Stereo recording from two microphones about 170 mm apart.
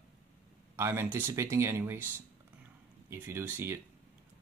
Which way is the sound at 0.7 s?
15° right (ahead or behind).